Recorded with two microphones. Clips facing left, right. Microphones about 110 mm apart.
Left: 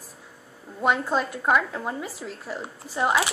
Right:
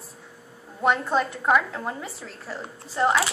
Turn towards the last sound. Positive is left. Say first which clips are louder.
# right 1 dB
turn(degrees=10)  # may be behind; listen again after turning